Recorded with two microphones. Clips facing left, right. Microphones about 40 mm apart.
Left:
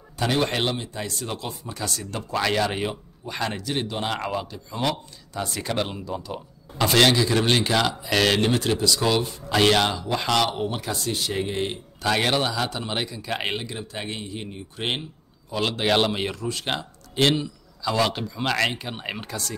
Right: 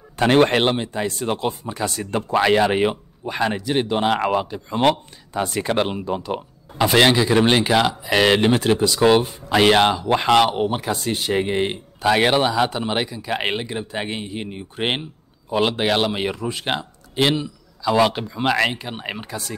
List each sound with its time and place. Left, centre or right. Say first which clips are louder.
0.2 s speech: right 8 dB; right
3.3 s a man's voice: right 6 dB; centre
3.8 s a man's voice: right 8 dB; right
4.6 s speech: right 9 dB; right
6.8 s a man's voice: right 3 dB; centre
12.0 s a man's voice: right 6 dB; right
15.9 s speech: right 1 dB; centre
17.1 s a sound: right 2 dB; centre
17.9 s speech: right 6 dB; centre